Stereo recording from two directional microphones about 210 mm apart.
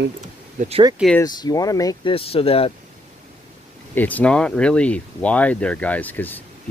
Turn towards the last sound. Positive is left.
turn(degrees=10)  # may be behind; listen again after turning